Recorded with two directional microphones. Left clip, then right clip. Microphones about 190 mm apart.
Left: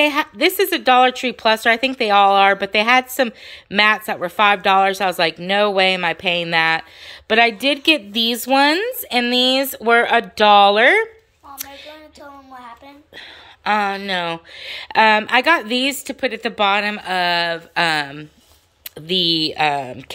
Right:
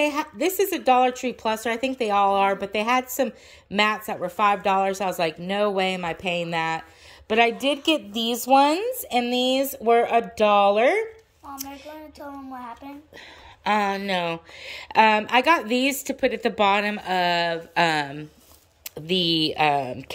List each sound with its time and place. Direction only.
0.0 s a woman's voice: centre (ahead or behind)
7.7 s a woman's voice: 35° left (ahead or behind)
8.5 s a woman's voice: centre (ahead or behind)
13.7 s a woman's voice: 5° right (ahead or behind)